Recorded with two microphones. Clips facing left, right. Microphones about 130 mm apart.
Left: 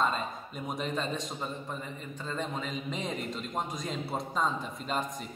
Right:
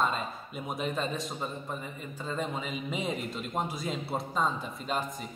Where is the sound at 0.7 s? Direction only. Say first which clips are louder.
Right 1 dB; 5° right (ahead or behind).